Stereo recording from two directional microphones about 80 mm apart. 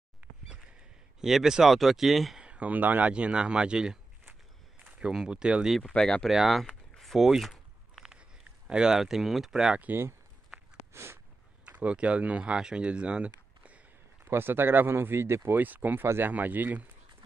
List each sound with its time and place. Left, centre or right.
1.2 s speech: centre
2.4 s speech: centre
5.1 s speech: centre
5.8 s speech: centre
6.7 s a sound: centre
8.6 s speech: centre
9.8 s speech: right
10.9 s a sound: right
11.6 s speech: centre
14.2 s speech: right
15.5 s speech: right